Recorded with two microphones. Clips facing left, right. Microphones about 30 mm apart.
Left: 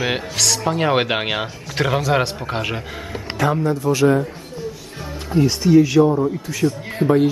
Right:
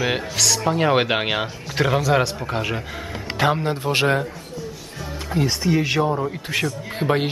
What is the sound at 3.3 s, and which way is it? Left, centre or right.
Speech, right.